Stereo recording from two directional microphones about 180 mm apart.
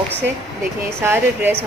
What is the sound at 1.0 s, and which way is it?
Speech, 15° right (ahead or behind).